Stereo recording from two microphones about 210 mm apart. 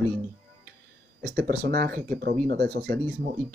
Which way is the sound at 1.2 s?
45° right (ahead or behind).